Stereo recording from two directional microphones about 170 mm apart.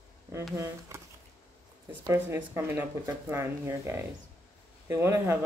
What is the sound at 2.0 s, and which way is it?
Speech, 15° right (ahead or behind).